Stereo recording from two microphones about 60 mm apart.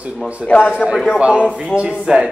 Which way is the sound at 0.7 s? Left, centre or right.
Centre.